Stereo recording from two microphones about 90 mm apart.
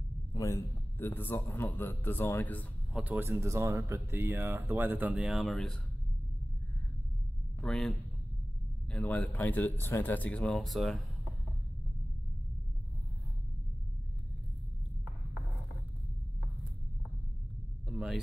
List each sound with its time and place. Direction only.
0.3 s a man's voice: 35° left (ahead or behind)
0.9 s a man's voice: 25° left (ahead or behind)
3.0 s speech: 20° right (ahead or behind)
3.3 s speech: 30° right (ahead or behind)
5.2 s speech: centre (ahead or behind)
7.6 s speech: 5° left (ahead or behind)
8.9 s speech: 20° left (ahead or behind); by 11.3 s centre (ahead or behind)
17.9 s a sound: 5° right (ahead or behind)